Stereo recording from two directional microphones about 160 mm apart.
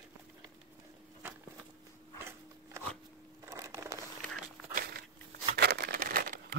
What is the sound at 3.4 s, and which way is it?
Crumpling, 20° right (ahead or behind).